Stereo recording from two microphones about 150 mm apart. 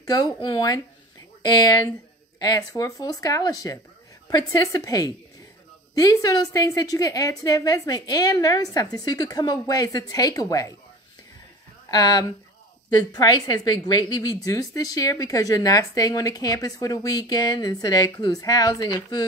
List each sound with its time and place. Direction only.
0.0 s a woman's voice: 25° left (ahead or behind)
11.9 s a woman's voice: 25° left (ahead or behind)